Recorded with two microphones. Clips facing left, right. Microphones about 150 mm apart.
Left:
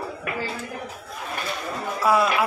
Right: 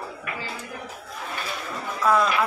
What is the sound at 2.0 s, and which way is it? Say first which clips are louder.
Speech: left 1 dB; 10° left (ahead or behind).